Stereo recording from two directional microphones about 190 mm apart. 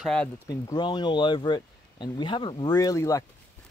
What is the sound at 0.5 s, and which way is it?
Speech, 20° left (ahead or behind).